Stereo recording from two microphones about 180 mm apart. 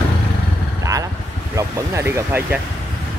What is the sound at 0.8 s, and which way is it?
Vehicle, 20° right (ahead or behind).